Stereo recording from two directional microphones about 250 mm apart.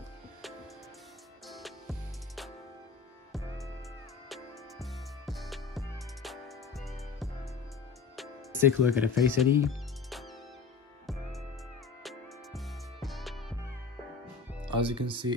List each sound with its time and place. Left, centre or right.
1.5 s music: centre
4.3 s music: centre
8.2 s speech: centre
10.0 s music: centre
12.0 s music: centre
14.9 s speech: centre